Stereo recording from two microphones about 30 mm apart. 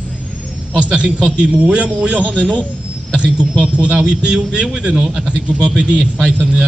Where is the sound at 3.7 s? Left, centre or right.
Right.